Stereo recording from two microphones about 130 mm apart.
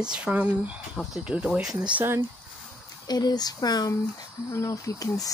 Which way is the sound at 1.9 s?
15° right (ahead or behind).